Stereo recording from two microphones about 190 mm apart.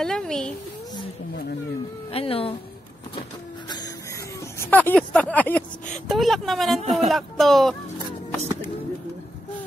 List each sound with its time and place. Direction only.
0.0 s a sound: 5° left (ahead or behind)
2.1 s speech: 30° left (ahead or behind)
4.6 s speech: 10° left (ahead or behind)
6.8 s speech: 35° right (ahead or behind)
7.1 s speech: centre (ahead or behind)